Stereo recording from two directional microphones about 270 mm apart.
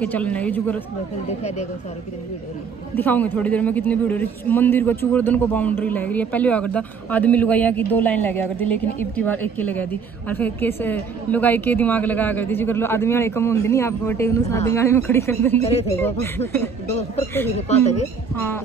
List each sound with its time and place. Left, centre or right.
0.0 s a man's voice: centre
3.0 s a man's voice: centre
15.6 s speech: left
16.0 s a woman's voice: centre
17.6 s speech: left
18.3 s a woman's voice: centre